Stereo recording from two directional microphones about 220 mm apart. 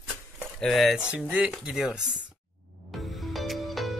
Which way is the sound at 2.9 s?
Centre (ahead or behind).